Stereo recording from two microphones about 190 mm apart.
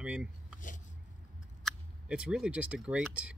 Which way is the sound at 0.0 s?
5° right (ahead or behind).